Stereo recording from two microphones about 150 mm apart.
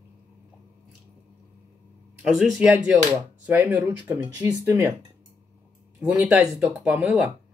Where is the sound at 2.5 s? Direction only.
10° right (ahead or behind).